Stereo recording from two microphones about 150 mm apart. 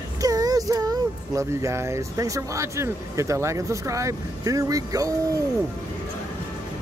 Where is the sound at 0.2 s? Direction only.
25° right (ahead or behind).